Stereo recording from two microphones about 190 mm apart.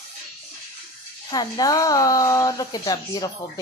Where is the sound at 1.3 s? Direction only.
20° left (ahead or behind).